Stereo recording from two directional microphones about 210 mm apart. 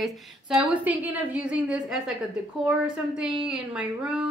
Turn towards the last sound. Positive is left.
turn(degrees=-5)  # may be behind; listen again after turning